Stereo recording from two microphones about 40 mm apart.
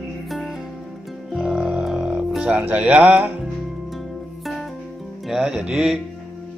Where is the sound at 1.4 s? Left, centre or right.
Centre.